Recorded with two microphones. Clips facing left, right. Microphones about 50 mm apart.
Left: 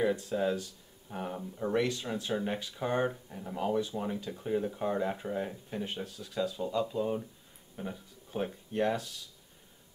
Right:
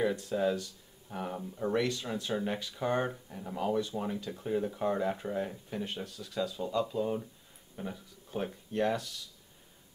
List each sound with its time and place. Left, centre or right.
0.0 s speech: centre